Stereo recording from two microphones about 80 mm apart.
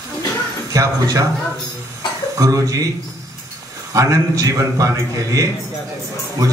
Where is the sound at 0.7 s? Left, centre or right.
Right.